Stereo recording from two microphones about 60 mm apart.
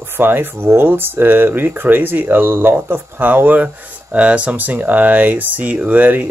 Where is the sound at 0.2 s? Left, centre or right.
Right.